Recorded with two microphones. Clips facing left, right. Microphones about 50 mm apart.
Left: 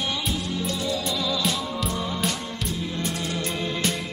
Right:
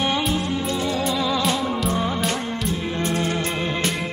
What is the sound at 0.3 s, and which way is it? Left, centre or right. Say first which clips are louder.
Music: right 5 dB; right.